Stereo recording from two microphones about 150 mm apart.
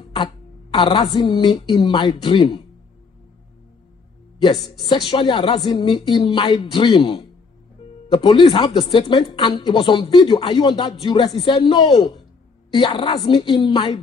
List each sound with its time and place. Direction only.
0.1 s a woman's voice: 30° left (ahead or behind)
5.0 s speech: 40° left (ahead or behind)